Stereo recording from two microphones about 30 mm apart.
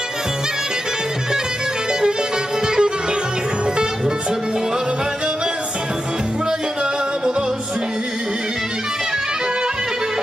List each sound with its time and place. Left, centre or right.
2.6 s music: right